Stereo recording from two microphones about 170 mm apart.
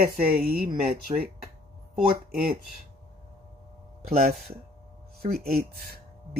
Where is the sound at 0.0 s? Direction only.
60° right (ahead or behind).